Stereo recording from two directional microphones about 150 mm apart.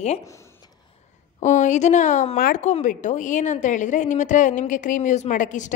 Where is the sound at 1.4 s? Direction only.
55° left (ahead or behind).